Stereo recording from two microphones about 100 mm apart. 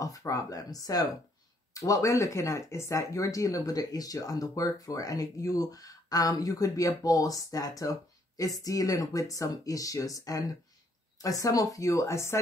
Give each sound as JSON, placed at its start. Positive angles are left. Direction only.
{"t": 0.0, "sound": "speech", "side_deg": 35}